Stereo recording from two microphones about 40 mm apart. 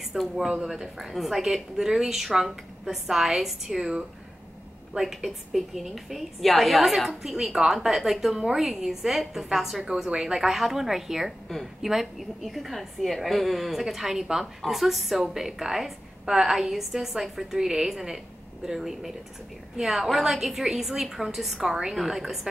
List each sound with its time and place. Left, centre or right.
0.1 s speech: right
0.5 s a woman's voice: centre
4.9 s a woman's voice: centre